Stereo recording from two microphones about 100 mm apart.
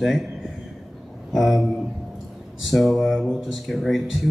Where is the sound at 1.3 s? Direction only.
Centre (ahead or behind).